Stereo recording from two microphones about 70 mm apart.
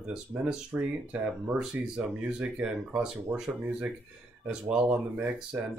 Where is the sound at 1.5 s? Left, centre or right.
Centre.